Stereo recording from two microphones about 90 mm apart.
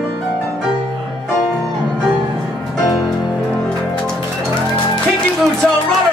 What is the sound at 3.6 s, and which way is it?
Music, 10° left (ahead or behind).